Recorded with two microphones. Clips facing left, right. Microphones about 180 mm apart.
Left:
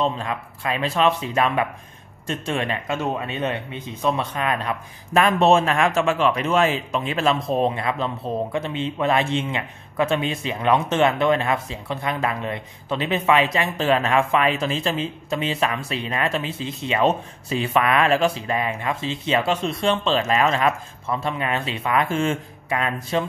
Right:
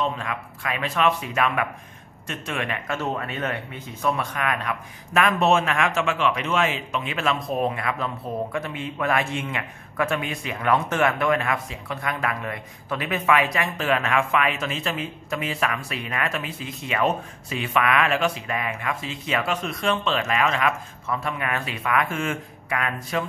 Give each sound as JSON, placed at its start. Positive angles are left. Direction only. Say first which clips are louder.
{"t": 0.0, "sound": "speech", "louder": "left 3 dB", "side_deg": 30}
{"t": 2.9, "sound": "speech", "louder": "left 2 dB", "side_deg": 20}